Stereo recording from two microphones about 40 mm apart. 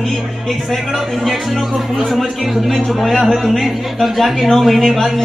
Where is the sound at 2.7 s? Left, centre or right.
Centre.